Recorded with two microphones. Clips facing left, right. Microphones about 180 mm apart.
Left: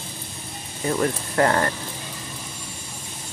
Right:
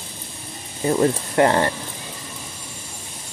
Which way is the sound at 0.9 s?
25° right (ahead or behind).